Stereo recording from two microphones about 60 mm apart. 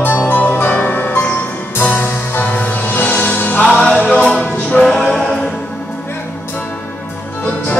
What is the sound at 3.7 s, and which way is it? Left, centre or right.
Music, centre.